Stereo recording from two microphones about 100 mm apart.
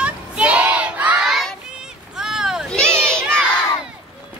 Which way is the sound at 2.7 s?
10° left (ahead or behind).